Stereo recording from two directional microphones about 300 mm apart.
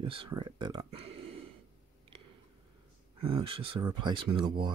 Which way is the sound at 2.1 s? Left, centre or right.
Centre.